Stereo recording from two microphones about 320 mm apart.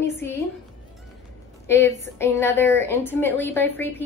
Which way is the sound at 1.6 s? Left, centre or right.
Centre.